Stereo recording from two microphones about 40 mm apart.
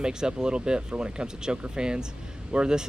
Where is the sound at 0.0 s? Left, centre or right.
Centre.